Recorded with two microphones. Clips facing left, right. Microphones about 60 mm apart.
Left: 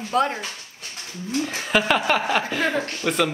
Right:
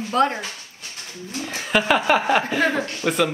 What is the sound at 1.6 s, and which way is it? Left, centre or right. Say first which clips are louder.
A woman's voice: right 2 dB; centre.